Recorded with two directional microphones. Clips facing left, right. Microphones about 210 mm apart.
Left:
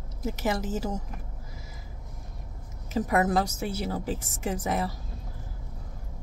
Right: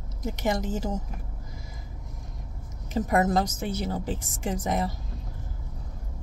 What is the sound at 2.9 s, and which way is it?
A woman's voice, 5° left (ahead or behind).